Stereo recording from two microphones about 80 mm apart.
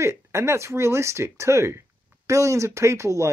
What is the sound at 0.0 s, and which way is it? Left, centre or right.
Speech, right.